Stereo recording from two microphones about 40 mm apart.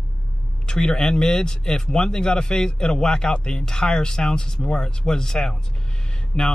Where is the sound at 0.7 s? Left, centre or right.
Centre.